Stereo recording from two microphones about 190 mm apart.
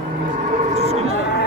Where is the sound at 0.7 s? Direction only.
35° right (ahead or behind).